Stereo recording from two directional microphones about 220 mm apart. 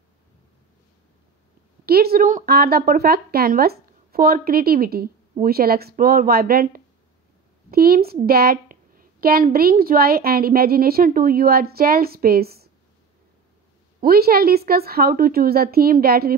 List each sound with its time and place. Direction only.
1.9 s a woman's voice: 45° right (ahead or behind)
14.0 s a woman's voice: 45° right (ahead or behind)